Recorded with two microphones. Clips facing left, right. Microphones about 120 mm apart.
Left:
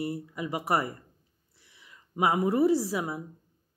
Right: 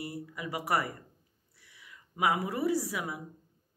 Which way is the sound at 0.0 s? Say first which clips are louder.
Left 6 dB; 25° left (ahead or behind).